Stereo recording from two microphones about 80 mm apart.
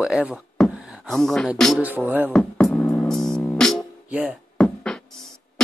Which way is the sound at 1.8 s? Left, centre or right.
Right.